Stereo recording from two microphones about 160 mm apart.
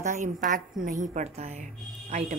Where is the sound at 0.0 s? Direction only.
50° right (ahead or behind).